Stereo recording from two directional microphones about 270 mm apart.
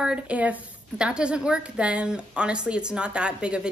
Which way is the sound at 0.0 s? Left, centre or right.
Centre.